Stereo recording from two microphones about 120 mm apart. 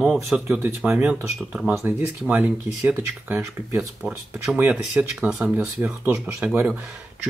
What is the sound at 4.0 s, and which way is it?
Speech, 5° right (ahead or behind).